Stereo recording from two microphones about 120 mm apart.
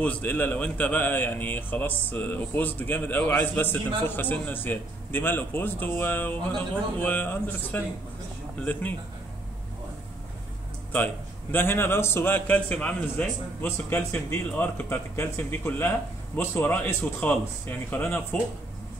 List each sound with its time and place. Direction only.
0.0 s speech: 15° left (ahead or behind)
11.5 s speech: 20° left (ahead or behind)